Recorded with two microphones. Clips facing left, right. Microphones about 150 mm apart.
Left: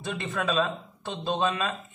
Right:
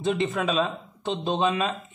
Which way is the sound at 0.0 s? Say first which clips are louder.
Right 6 dB; 20° right (ahead or behind).